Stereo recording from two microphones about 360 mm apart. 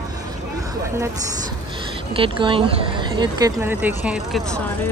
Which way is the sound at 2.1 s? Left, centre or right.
Centre.